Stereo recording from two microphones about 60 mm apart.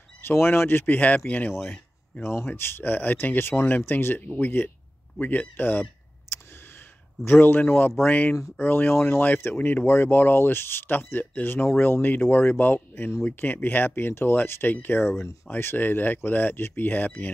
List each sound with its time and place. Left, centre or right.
0.2 s speech: left
2.2 s speech: left
7.2 s speech: left